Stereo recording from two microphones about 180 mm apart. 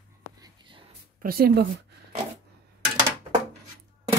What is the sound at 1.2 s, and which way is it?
Speech, 55° right (ahead or behind).